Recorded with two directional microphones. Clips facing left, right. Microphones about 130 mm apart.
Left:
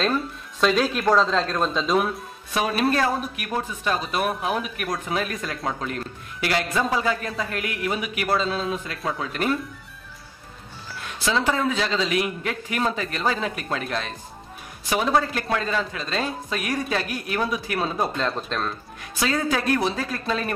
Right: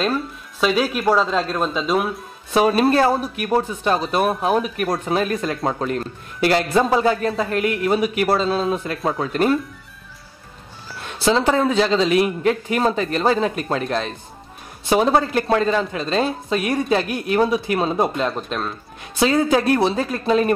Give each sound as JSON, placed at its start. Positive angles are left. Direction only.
{"t": 0.0, "sound": "speech", "side_deg": -5}
{"t": 2.5, "sound": "speech", "side_deg": -30}
{"t": 11.1, "sound": "speech", "side_deg": -30}
{"t": 18.1, "sound": "speech", "side_deg": -15}
{"t": 19.1, "sound": "speech", "side_deg": -25}